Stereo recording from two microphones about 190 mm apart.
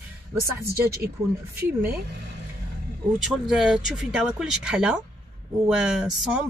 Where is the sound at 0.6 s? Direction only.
55° right (ahead or behind).